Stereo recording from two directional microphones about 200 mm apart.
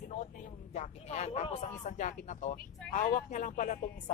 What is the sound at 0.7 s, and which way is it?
Speech, 35° left (ahead or behind).